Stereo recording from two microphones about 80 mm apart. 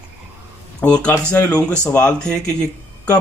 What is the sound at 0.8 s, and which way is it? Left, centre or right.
Speech, centre.